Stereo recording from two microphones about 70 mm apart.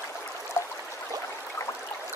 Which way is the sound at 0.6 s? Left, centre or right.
Left.